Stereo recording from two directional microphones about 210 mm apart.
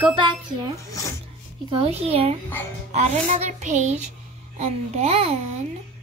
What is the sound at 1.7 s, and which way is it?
A child's voice, 30° right (ahead or behind).